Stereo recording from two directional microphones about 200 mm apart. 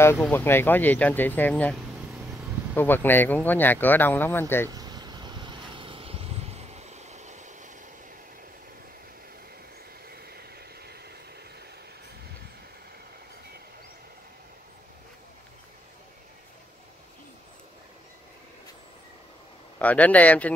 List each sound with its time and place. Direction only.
0.2 s speech: 10° left (ahead or behind)
4.6 s vehicle: 20° right (ahead or behind); by 7.7 s 35° right (ahead or behind)
10.2 s vehicle: 50° right (ahead or behind)
19.8 s speech: 5° left (ahead or behind)